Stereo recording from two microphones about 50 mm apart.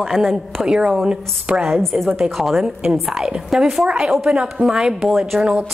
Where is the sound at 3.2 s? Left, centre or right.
Centre.